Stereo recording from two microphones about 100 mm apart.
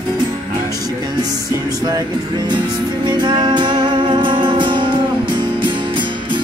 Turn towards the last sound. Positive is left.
turn(degrees=-55)  # may be behind; listen again after turning